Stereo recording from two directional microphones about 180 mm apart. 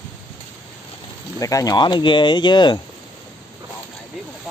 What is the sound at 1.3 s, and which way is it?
Speech, 20° left (ahead or behind).